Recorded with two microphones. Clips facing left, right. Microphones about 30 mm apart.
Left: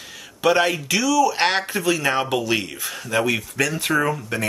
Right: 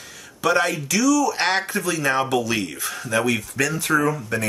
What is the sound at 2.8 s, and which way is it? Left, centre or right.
Speech, centre.